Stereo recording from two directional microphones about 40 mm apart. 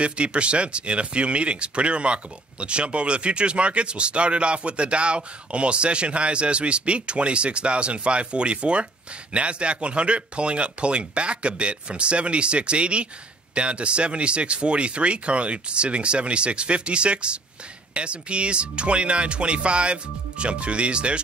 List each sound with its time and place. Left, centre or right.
0.0 s speech: right